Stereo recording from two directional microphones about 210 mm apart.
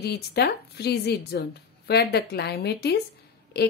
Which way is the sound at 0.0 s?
50° left (ahead or behind).